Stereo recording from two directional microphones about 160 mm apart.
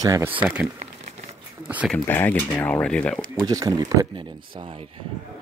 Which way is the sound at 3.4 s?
20° right (ahead or behind).